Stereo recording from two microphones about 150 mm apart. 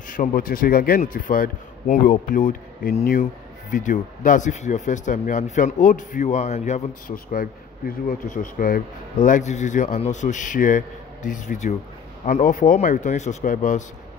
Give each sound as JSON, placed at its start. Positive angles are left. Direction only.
{"t": 0.1, "sound": "speech", "side_deg": 65}
{"t": 7.1, "sound": "speech", "side_deg": 70}